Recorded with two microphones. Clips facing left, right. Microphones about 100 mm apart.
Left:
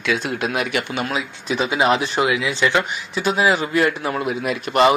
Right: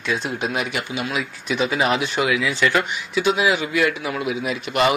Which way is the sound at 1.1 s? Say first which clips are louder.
Left 1 dB; 35° left (ahead or behind).